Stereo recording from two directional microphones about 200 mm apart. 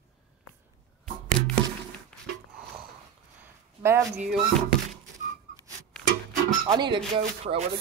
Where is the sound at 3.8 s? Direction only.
10° right (ahead or behind).